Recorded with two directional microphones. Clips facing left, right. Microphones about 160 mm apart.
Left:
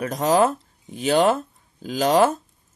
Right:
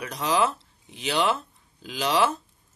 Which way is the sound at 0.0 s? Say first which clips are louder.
Left 6 dB; 45° left (ahead or behind).